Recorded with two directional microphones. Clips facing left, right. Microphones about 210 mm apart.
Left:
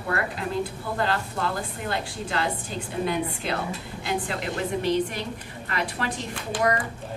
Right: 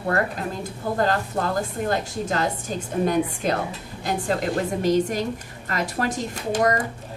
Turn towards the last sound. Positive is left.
turn(degrees=-40)  # may be behind; listen again after turning